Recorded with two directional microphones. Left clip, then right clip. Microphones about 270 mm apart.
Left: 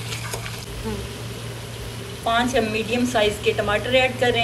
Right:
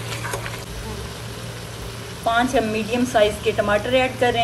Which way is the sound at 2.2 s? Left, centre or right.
Right.